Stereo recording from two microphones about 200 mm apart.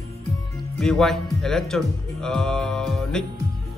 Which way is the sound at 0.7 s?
Centre (ahead or behind).